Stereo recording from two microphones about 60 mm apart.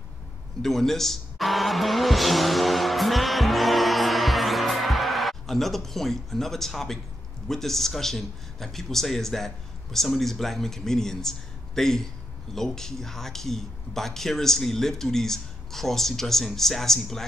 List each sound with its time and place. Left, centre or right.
0.6 s vehicle: centre
7.4 s speech: centre